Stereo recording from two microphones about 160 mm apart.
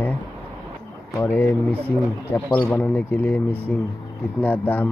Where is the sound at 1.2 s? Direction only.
15° left (ahead or behind).